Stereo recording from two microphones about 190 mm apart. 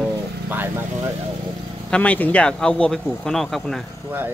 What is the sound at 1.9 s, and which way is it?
Speech, 10° left (ahead or behind).